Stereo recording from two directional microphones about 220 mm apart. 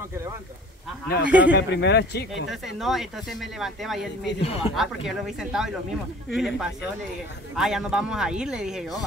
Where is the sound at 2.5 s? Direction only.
Centre (ahead or behind).